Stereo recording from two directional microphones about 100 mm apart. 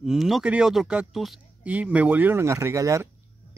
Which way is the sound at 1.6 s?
15° right (ahead or behind).